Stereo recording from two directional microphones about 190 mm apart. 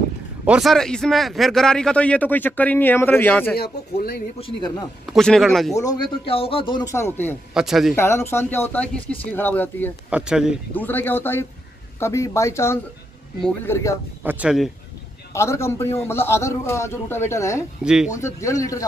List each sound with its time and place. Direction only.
0.5 s a man's voice: centre (ahead or behind)
3.5 s speech: 55° left (ahead or behind)
4.4 s speech: 25° left (ahead or behind)
5.0 s speech: centre (ahead or behind)
6.2 s speech: 30° left (ahead or behind); by 7.3 s 10° left (ahead or behind)
7.5 s speech: centre (ahead or behind)
7.9 s a man's voice: 15° left (ahead or behind)
10.0 s speech: 5° right (ahead or behind)
10.7 s a man's voice: 10° left (ahead or behind)
14.2 s speech: 5° right (ahead or behind)
15.3 s a man's voice: 15° left (ahead or behind)
17.8 s speech: 5° right (ahead or behind)
18.1 s a man's voice: 15° left (ahead or behind)